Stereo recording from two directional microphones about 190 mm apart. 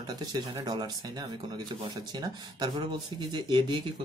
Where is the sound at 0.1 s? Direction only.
20° right (ahead or behind).